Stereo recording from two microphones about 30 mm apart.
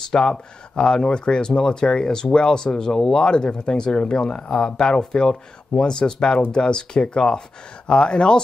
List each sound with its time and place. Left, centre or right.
0.1 s speech: left
3.3 s speech: left
4.5 s speech: centre